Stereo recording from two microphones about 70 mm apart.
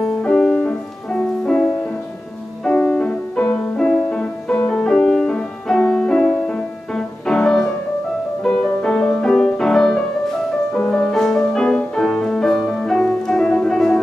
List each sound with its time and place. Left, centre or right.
0.0 s music: centre